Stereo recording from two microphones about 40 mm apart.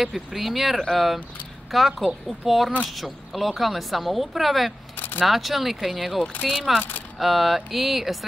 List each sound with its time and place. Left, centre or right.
0.0 s speech: centre
4.9 s a sound: left
5.2 s speech: centre